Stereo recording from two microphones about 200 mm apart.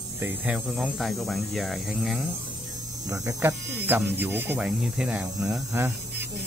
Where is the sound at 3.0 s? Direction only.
15° right (ahead or behind).